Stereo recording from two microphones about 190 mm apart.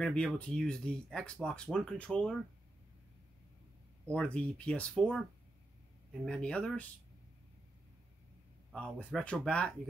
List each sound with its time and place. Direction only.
0.0 s speech: 5° left (ahead or behind)
4.1 s speech: 5° left (ahead or behind)
6.2 s speech: 5° left (ahead or behind)
8.7 s speech: 5° left (ahead or behind)